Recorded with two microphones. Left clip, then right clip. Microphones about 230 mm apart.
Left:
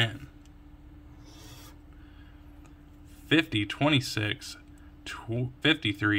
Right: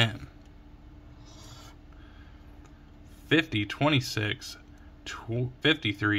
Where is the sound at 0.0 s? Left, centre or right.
Centre.